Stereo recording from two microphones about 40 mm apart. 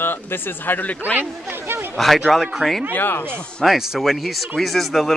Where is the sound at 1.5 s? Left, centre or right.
Right.